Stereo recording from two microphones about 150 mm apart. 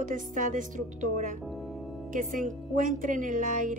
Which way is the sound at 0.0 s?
60° right (ahead or behind).